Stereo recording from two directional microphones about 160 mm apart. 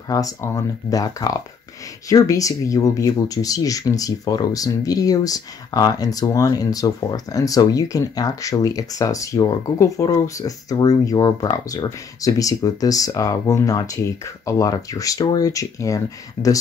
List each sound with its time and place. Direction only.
0.1 s speech: 20° left (ahead or behind)